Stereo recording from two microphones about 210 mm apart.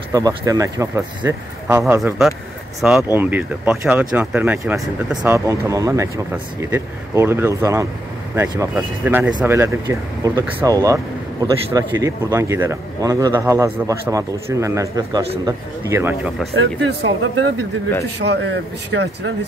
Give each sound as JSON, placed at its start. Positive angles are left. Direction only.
{"t": 0.1, "sound": "speech", "side_deg": -15}
{"t": 16.5, "sound": "speech", "side_deg": -60}